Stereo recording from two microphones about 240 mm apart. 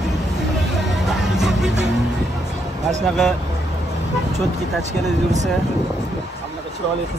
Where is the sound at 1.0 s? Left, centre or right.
Centre.